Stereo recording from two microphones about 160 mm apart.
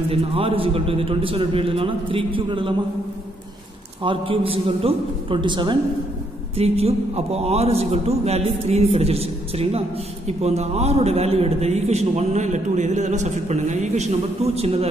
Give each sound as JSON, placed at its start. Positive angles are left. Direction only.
{"t": 0.1, "sound": "a man's voice", "side_deg": -35}
{"t": 4.0, "sound": "a man's voice", "side_deg": -35}